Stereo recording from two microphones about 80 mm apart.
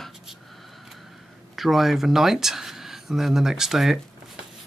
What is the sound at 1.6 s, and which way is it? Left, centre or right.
Speech, centre.